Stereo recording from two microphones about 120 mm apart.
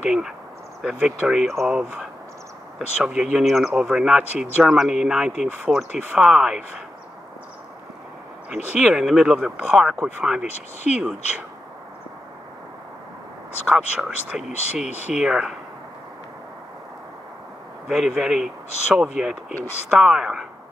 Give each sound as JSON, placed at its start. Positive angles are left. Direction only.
{"t": 0.0, "sound": "speech", "side_deg": -5}
{"t": 8.7, "sound": "speech", "side_deg": -5}
{"t": 10.4, "sound": "speech", "side_deg": 70}
{"t": 11.0, "sound": "speech", "side_deg": -10}
{"t": 13.7, "sound": "speech", "side_deg": -10}
{"t": 14.9, "sound": "speech", "side_deg": 70}
{"t": 15.1, "sound": "speech", "side_deg": -5}
{"t": 17.8, "sound": "speech", "side_deg": -5}